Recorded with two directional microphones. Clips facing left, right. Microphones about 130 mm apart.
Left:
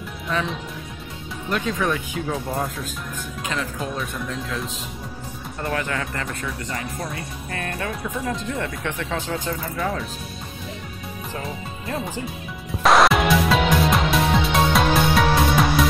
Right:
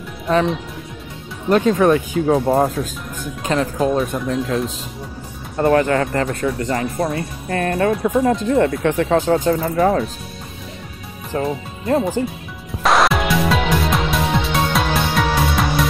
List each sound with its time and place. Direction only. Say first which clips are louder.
1.5 s speech: right 10 dB; 45° right (ahead or behind)
5.6 s speech: right 11 dB; 45° right (ahead or behind)
11.3 s speech: right 12 dB; 35° right (ahead or behind)
12.8 s music: even; centre (ahead or behind)